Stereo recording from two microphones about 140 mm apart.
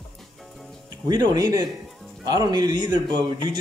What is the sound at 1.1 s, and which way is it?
Speech, 30° right (ahead or behind).